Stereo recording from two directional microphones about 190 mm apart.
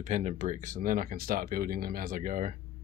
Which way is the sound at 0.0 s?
40° right (ahead or behind).